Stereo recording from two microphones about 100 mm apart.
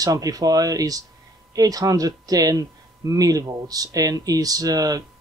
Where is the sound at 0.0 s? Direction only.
35° right (ahead or behind).